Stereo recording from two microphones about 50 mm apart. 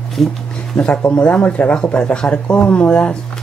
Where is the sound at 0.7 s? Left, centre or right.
Left.